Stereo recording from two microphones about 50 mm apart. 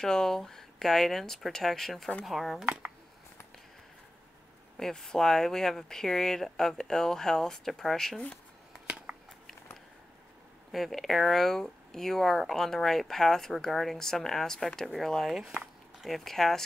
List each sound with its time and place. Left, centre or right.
0.0 s speech: centre
2.6 s speech: right
4.7 s speech: centre
8.8 s a sound: centre
10.7 s speech: centre
15.3 s speech: centre